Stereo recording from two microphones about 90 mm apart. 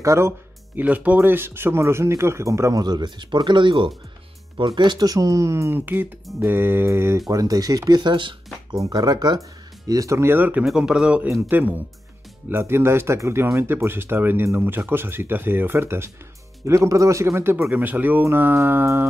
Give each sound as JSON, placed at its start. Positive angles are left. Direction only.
{"t": 0.0, "sound": "speech", "side_deg": -30}
{"t": 0.7, "sound": "speech", "side_deg": -15}
{"t": 2.8, "sound": "speech", "side_deg": -50}
{"t": 5.8, "sound": "speech", "side_deg": -20}
{"t": 7.2, "sound": "speech", "side_deg": -40}
{"t": 8.9, "sound": "speech", "side_deg": -50}
{"t": 9.8, "sound": "speech", "side_deg": -40}
{"t": 10.6, "sound": "a man's voice", "side_deg": -5}
{"t": 11.2, "sound": "speech", "side_deg": -25}